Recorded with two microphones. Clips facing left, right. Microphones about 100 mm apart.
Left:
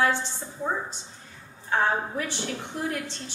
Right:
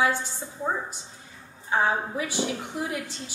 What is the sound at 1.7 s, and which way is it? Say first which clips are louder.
A woman's voice: even; 10° right (ahead or behind).